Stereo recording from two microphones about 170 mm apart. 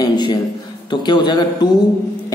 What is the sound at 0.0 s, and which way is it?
Speech, 25° left (ahead or behind).